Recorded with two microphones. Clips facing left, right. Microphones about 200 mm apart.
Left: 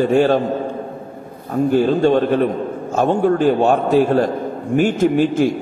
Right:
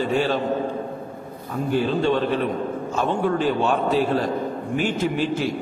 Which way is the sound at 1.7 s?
45° left (ahead or behind).